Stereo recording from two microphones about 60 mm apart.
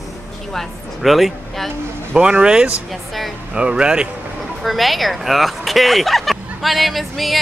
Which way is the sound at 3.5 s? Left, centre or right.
Centre.